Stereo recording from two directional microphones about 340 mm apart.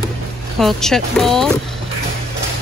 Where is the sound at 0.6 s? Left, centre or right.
Centre.